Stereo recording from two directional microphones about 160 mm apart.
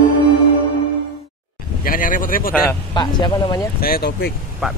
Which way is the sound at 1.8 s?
60° left (ahead or behind).